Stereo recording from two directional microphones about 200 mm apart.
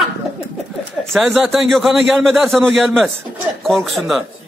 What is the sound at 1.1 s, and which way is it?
A man's voice, centre (ahead or behind).